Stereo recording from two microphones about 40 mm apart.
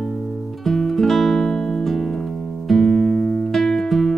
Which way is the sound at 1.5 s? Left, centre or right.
Centre.